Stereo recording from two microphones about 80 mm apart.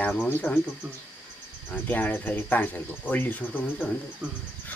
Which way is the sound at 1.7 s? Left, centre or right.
Left.